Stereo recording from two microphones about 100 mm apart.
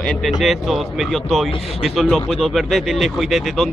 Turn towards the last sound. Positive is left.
turn(degrees=0)  # may be behind; listen again after turning